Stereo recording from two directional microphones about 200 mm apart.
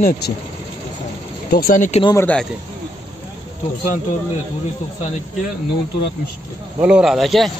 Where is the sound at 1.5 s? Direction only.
45° left (ahead or behind).